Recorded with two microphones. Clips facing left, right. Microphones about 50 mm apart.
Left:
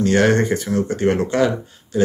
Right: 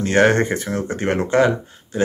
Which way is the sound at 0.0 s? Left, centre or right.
Right.